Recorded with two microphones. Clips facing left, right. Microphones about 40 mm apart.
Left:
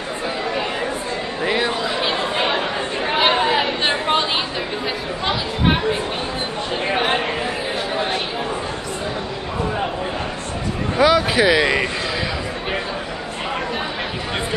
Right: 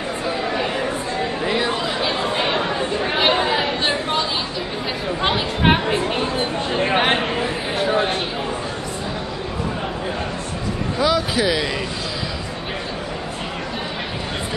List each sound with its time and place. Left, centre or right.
1.4 s speech: centre
2.3 s chatter: centre
11.0 s a sound: left